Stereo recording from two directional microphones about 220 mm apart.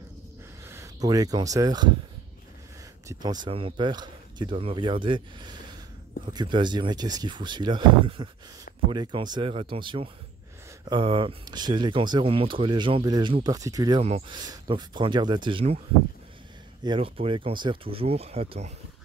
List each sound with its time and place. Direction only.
0.7 s speech: 15° right (ahead or behind)
3.1 s speech: 20° right (ahead or behind)
16.8 s speech: 25° right (ahead or behind)